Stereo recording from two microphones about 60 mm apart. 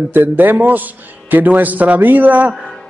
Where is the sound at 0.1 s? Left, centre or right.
Right.